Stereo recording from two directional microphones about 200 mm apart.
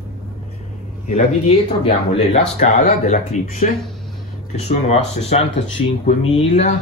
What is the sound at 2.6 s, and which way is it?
Speech, 35° left (ahead or behind).